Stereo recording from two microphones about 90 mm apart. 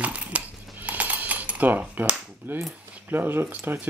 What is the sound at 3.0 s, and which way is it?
Speech, 25° right (ahead or behind).